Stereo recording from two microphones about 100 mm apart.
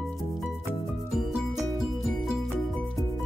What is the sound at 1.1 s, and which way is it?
Music, 5° right (ahead or behind).